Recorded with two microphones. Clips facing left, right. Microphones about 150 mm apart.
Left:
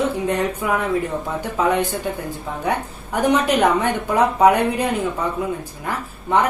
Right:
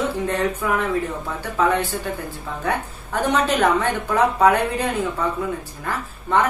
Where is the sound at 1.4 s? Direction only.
15° left (ahead or behind).